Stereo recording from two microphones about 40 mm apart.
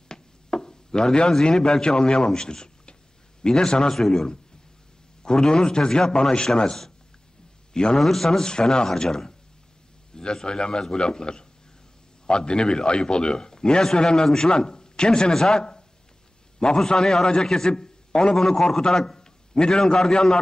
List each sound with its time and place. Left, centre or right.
0.1 s a man's voice: centre
3.9 s a man's voice: centre
8.0 s a man's voice: centre